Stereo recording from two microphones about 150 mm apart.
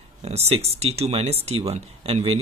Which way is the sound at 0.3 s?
45° right (ahead or behind).